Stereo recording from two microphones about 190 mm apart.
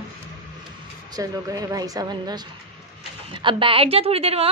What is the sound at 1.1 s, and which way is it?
A woman's voice, 20° right (ahead or behind).